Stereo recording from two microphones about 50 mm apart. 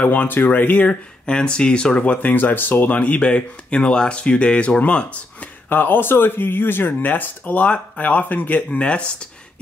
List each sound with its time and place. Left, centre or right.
0.0 s speech: left
1.2 s speech: centre
2.2 s speech: left
5.7 s speech: left
8.6 s speech: left